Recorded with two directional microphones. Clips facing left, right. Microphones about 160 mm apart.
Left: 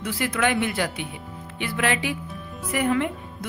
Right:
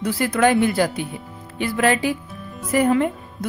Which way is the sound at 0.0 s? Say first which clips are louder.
Right 6 dB; 40° right (ahead or behind).